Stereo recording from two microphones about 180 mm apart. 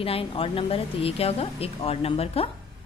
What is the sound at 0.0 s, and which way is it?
A woman's voice, 30° left (ahead or behind).